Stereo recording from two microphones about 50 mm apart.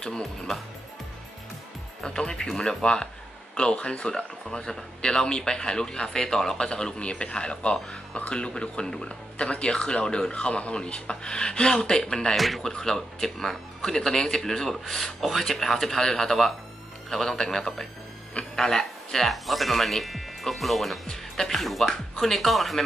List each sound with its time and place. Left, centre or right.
0.0 s speech: centre
2.0 s speech: centre